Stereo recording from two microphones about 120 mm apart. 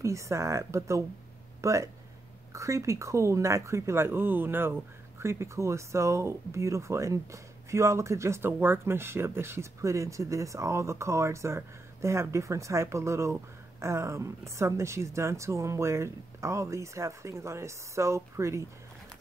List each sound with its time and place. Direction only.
0.0 s speech: 25° right (ahead or behind)